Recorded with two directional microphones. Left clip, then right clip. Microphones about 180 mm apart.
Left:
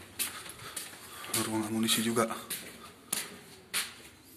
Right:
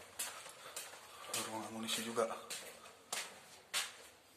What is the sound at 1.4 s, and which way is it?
Speech, 15° left (ahead or behind).